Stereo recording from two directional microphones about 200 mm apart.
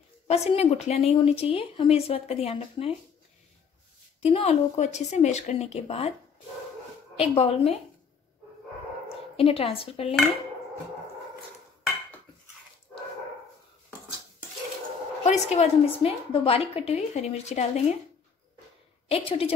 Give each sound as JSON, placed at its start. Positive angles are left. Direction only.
{"t": 0.3, "sound": "a woman's voice", "side_deg": 30}
{"t": 4.2, "sound": "a woman's voice", "side_deg": 30}
{"t": 7.2, "sound": "speech", "side_deg": 30}
{"t": 9.4, "sound": "speech", "side_deg": 30}
{"t": 15.2, "sound": "a woman's voice", "side_deg": 35}
{"t": 19.0, "sound": "speech", "side_deg": 30}